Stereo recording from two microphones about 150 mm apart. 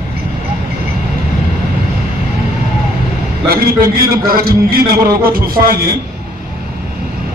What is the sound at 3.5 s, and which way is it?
A man's voice, 80° right.